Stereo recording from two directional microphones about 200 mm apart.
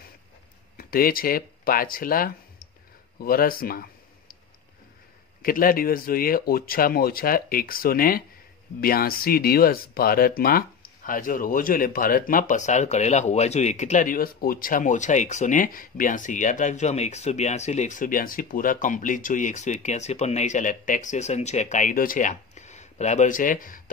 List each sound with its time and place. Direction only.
0.7 s speech: 45° left (ahead or behind)
5.4 s speech: 45° left (ahead or behind)